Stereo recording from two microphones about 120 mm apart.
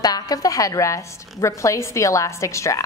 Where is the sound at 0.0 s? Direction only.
30° left (ahead or behind).